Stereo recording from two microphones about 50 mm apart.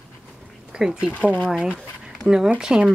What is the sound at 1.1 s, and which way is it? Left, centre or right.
Speech, left.